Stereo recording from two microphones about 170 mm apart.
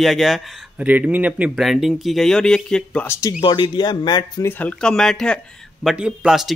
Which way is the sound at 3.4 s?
25° left (ahead or behind).